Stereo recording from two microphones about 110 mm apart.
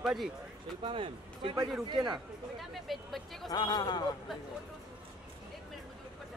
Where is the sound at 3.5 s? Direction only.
40° left (ahead or behind).